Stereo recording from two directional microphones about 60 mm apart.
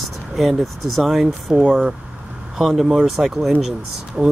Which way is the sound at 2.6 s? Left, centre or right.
Centre.